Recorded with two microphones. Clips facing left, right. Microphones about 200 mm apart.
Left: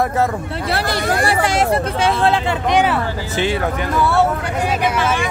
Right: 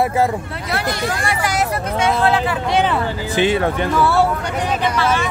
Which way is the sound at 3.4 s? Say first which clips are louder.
Right 3 dB; 25° right (ahead or behind).